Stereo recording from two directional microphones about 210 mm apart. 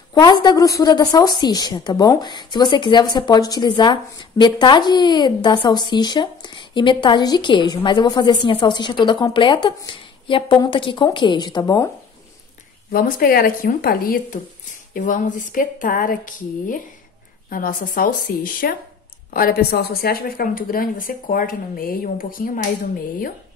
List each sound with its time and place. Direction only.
0.1 s a woman's voice: 20° left (ahead or behind)
12.9 s a woman's voice: 45° left (ahead or behind)